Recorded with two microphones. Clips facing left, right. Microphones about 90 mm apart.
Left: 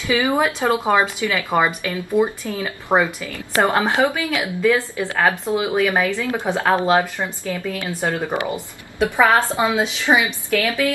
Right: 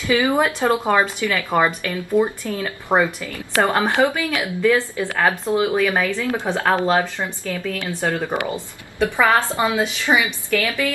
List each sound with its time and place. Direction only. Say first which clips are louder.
0.0 s a woman's voice: right 1 dB; 15° left (ahead or behind)